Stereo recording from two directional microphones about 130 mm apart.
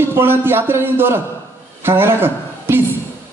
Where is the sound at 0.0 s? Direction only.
20° right (ahead or behind).